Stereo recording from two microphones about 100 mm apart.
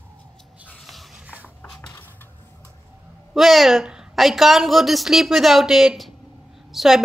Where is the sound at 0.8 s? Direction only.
Centre (ahead or behind).